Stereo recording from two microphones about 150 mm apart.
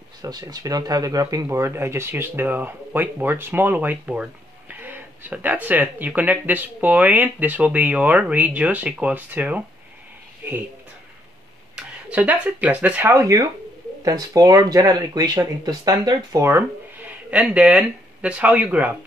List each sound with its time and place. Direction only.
0.2 s speech: 25° right (ahead or behind)
10.4 s a sound: 10° right (ahead or behind)
11.7 s speech: 10° right (ahead or behind)